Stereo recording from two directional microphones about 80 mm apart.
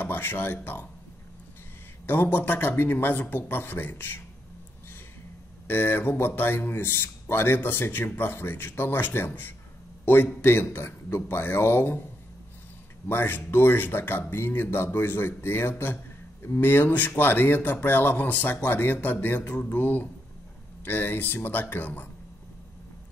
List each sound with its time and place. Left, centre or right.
0.0 s speech: left
2.0 s speech: left
5.7 s speech: left
13.1 s speech: left